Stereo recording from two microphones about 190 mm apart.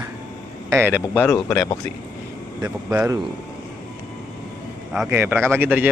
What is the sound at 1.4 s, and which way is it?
Speech, 15° left (ahead or behind).